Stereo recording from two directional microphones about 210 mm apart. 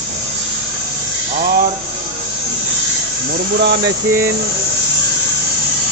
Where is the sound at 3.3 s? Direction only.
50° right (ahead or behind).